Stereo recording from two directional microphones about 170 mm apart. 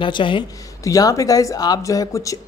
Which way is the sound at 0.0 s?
30° left (ahead or behind).